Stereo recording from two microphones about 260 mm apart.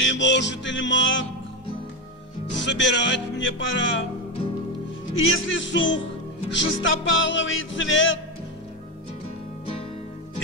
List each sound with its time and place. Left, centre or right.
0.0 s music: left
2.6 s music: left
5.1 s music: left